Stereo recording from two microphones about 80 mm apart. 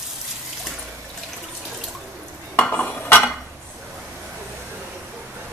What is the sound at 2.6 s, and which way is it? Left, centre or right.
Cutlery, centre.